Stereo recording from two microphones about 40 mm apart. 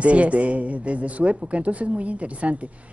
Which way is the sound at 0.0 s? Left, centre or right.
Right.